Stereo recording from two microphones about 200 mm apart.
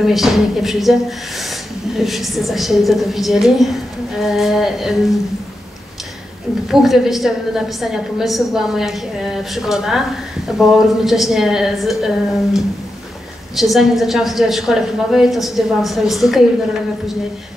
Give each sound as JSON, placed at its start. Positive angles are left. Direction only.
{"t": 0.0, "sound": "a woman's voice", "side_deg": 0}
{"t": 2.0, "sound": "a woman's voice", "side_deg": 0}
{"t": 6.7, "sound": "a woman's voice", "side_deg": 0}
{"t": 13.6, "sound": "a woman's voice", "side_deg": 0}